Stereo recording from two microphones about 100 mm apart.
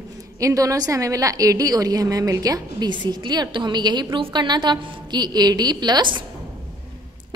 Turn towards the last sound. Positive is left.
turn(degrees=-45)  # may be behind; listen again after turning